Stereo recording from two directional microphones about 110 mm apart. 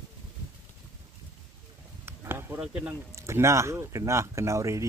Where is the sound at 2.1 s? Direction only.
20° right (ahead or behind).